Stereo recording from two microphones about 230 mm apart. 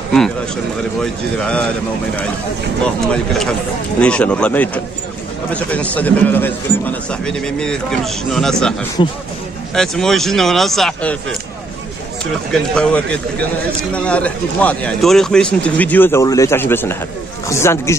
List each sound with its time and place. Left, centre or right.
1.4 s a man's voice: centre
2.8 s a man's voice: centre
9.0 s speech: left
9.8 s a man's voice: centre
12.4 s a man's voice: centre